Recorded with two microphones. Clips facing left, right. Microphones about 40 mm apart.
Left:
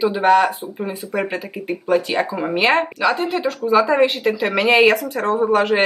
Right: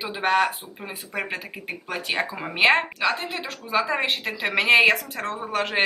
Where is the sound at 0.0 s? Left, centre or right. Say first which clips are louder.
Left 7 dB; centre.